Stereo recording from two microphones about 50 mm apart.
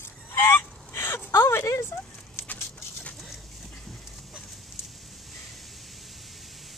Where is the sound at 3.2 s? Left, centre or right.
Centre.